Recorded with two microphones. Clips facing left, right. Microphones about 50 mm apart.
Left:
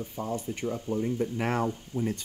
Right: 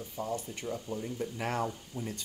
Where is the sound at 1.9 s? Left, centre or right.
Left.